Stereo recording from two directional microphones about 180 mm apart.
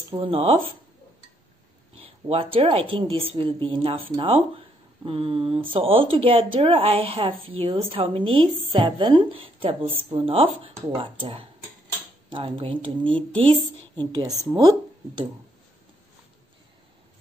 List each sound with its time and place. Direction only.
0.1 s speech: 30° right (ahead or behind)
2.2 s speech: 30° right (ahead or behind)